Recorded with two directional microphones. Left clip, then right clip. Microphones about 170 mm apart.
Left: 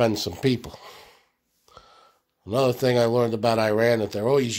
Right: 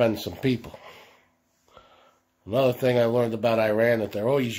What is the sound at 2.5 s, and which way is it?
Speech, 40° left (ahead or behind).